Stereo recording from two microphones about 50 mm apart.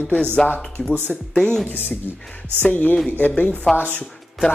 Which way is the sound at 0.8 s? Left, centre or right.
Centre.